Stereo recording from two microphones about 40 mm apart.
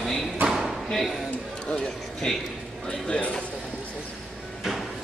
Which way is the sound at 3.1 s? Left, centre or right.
Left.